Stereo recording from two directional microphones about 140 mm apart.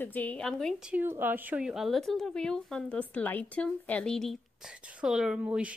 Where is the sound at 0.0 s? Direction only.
10° left (ahead or behind).